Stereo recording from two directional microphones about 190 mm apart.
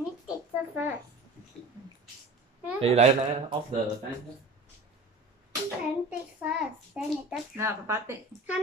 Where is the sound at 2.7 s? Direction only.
35° right (ahead or behind).